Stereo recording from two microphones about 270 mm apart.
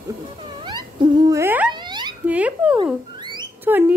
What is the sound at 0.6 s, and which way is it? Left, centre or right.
Cat, centre.